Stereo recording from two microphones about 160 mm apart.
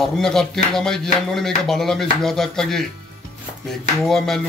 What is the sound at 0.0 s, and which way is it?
Speech, 5° left (ahead or behind).